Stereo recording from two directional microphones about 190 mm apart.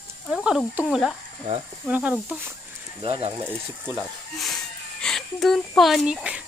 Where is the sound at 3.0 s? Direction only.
30° right (ahead or behind).